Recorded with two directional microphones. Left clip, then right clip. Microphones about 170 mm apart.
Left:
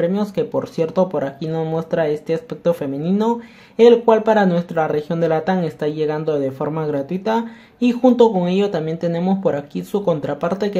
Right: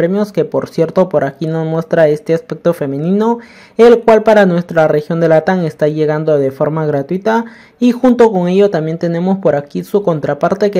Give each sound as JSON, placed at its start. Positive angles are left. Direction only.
{"t": 0.0, "sound": "speech", "side_deg": -35}